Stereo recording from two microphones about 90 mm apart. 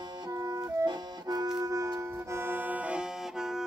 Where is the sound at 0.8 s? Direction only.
45° right (ahead or behind).